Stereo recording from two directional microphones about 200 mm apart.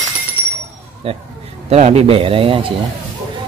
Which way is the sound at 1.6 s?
35° right (ahead or behind).